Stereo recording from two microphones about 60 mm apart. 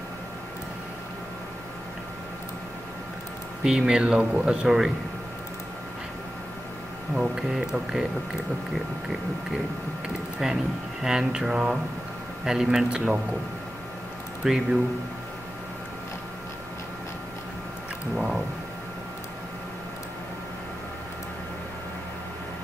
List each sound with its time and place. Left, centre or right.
3.6 s speech: centre
7.2 s speech: centre
10.4 s speech: centre
14.4 s speech: centre
18.1 s a sound: centre